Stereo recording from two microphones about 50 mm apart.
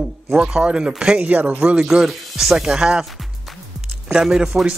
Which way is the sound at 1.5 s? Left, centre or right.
Centre.